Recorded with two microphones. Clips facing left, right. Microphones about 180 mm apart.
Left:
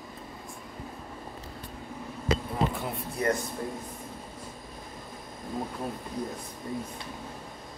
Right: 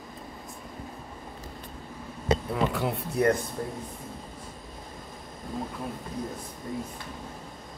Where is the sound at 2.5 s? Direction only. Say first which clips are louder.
Right 3 dB; 65° right (ahead or behind).